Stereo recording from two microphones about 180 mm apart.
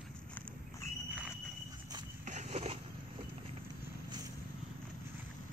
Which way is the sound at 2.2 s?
40° right (ahead or behind).